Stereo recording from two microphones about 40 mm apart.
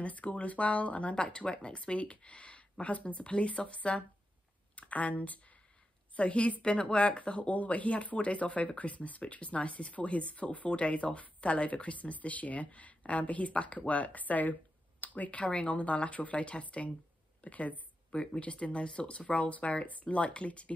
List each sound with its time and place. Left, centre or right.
0.0 s speech: left
6.1 s speech: left
17.4 s a sound: left
18.4 s speech: left